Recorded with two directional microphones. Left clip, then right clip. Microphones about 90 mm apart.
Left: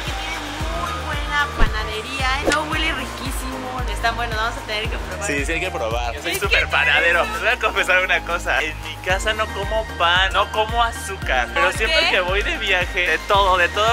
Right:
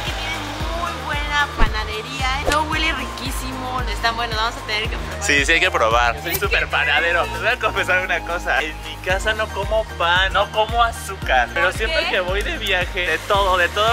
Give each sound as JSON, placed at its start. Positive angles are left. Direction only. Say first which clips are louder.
{"t": 1.3, "sound": "music", "louder": "even", "side_deg": -5}
{"t": 4.0, "sound": "speech", "louder": "even", "side_deg": -10}
{"t": 5.5, "sound": "speech", "louder": "right 7 dB", "side_deg": -30}
{"t": 6.7, "sound": "speech", "louder": "left 2 dB", "side_deg": 0}
{"t": 11.9, "sound": "speech", "louder": "left 3 dB", "side_deg": 15}
{"t": 12.2, "sound": "speech", "louder": "left 2 dB", "side_deg": 0}